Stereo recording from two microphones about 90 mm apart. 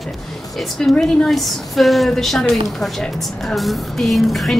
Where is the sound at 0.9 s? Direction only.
5° left (ahead or behind).